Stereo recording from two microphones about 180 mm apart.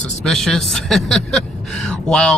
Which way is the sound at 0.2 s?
Centre (ahead or behind).